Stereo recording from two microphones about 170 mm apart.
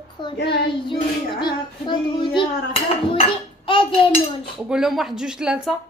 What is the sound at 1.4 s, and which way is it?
Child singing, 25° left (ahead or behind).